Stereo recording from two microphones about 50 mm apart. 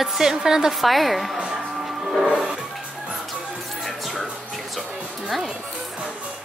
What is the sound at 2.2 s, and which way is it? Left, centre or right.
Music, centre.